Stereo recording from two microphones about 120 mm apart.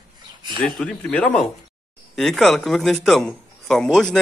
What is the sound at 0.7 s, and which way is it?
A man's voice, 5° left (ahead or behind).